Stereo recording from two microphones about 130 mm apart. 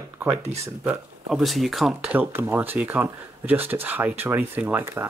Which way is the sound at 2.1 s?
15° right (ahead or behind).